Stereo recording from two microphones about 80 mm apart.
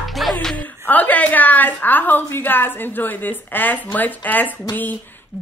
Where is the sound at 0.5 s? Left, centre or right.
Left.